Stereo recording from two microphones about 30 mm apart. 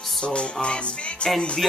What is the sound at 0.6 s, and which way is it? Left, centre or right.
Music, left.